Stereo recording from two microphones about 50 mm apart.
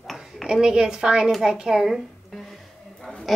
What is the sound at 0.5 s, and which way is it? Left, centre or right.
A woman's voice, centre.